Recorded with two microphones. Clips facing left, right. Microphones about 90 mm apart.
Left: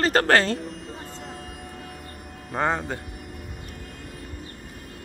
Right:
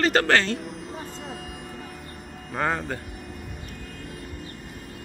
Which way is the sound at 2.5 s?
25° left (ahead or behind).